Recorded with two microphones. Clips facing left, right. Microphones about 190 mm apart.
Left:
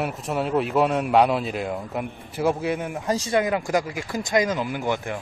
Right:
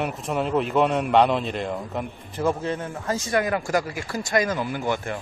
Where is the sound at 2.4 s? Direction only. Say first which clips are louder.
Left 2 dB; 15° left (ahead or behind).